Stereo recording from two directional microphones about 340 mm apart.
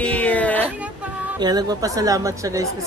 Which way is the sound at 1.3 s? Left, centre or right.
Centre.